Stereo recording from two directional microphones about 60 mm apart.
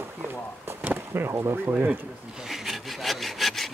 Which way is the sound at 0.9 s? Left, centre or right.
Right.